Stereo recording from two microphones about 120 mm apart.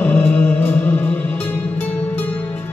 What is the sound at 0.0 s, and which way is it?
Music, 15° left (ahead or behind).